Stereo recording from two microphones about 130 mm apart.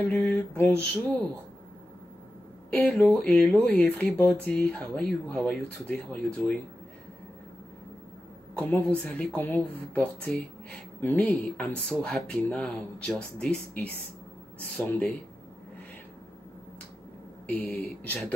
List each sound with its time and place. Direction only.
0.1 s speech: 15° left (ahead or behind)
2.7 s speech: 5° left (ahead or behind)
8.5 s speech: 10° left (ahead or behind)
14.9 s speech: 10° left (ahead or behind)
17.6 s speech: 10° left (ahead or behind)